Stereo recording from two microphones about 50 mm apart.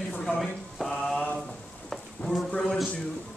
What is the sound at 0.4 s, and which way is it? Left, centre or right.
Mantra, centre.